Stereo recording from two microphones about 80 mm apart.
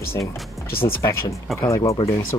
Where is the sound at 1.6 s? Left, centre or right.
Left.